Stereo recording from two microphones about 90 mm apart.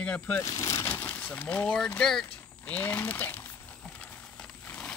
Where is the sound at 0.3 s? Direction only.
35° left (ahead or behind).